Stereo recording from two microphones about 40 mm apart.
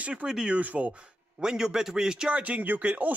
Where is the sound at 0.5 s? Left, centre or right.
Right.